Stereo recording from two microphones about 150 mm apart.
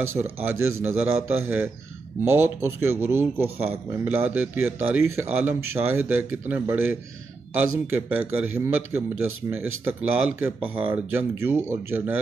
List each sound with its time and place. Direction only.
0.0 s a man's voice: 15° right (ahead or behind)